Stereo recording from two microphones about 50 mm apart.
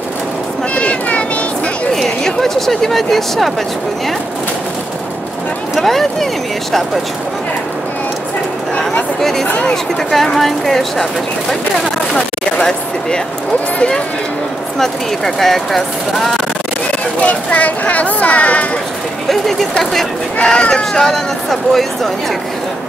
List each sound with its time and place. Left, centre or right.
0.7 s cat: left
2.0 s speech: centre
5.8 s speech: centre
9.2 s speech: centre
9.5 s speech: left
10.1 s speech: centre
12.5 s speech: centre
14.8 s speech: centre
17.2 s speech: left
19.2 s speech: centre
20.4 s speech: centre